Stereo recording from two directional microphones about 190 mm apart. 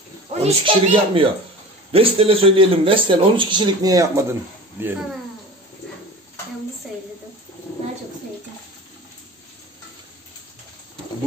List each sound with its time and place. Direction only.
0.4 s speech: 30° right (ahead or behind); by 4.9 s 15° right (ahead or behind)